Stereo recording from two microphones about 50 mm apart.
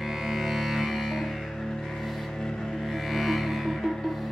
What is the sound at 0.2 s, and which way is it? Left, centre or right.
Music, centre.